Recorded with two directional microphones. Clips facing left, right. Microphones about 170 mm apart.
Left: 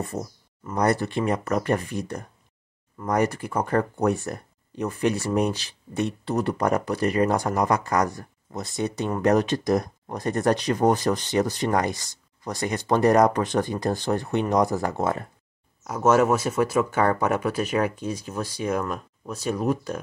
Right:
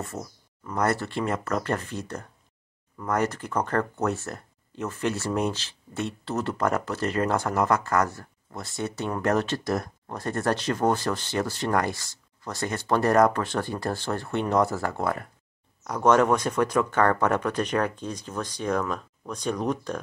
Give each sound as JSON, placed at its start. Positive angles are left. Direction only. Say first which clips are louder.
{"t": 0.0, "sound": "speech", "louder": "left 4 dB", "side_deg": 15}
{"t": 15.8, "sound": "speech", "louder": "left 1 dB", "side_deg": 5}